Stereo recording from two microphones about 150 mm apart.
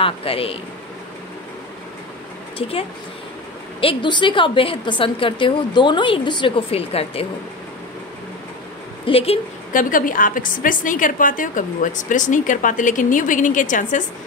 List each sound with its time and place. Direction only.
0.0 s a woman's voice: 40° left (ahead or behind)
2.6 s a woman's voice: 40° left (ahead or behind)
3.8 s a woman's voice: 30° left (ahead or behind)
9.0 s a woman's voice: 40° left (ahead or behind)
9.7 s a woman's voice: 65° left (ahead or behind)